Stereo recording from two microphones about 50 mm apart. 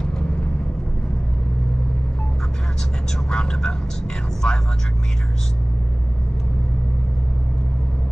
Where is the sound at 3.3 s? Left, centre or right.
Centre.